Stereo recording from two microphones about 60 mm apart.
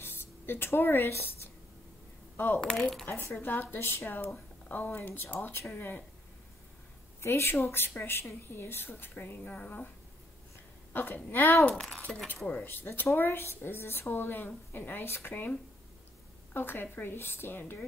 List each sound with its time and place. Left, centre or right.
0.0 s writing: left
2.3 s speech: left
2.6 s speech: centre
3.1 s speech: left
3.3 s speech: left
7.2 s speech: left
10.9 s speech: left
11.7 s speech: centre
12.6 s speech: left
16.5 s speech: left